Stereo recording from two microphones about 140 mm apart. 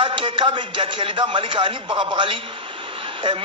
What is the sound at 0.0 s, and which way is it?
A man's voice, 35° right (ahead or behind).